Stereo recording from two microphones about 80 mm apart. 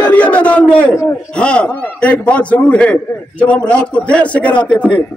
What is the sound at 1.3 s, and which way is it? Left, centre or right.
A man's voice, centre.